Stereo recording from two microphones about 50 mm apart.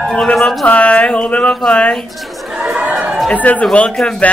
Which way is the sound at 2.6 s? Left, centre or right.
Right.